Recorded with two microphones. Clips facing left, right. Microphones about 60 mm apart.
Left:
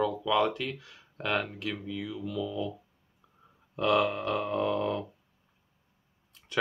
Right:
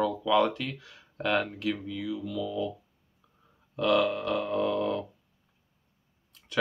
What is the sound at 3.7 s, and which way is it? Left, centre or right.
Speech, centre.